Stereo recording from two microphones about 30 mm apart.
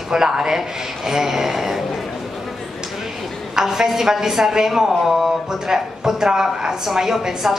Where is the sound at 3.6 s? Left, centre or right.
Centre.